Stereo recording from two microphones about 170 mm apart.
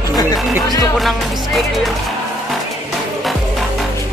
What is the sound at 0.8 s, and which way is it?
Speech, centre (ahead or behind).